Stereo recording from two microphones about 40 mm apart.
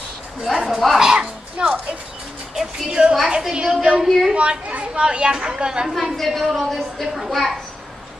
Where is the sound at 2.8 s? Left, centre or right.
Right.